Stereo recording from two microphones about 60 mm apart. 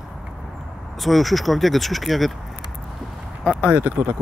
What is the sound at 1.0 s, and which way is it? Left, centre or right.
Speech, centre.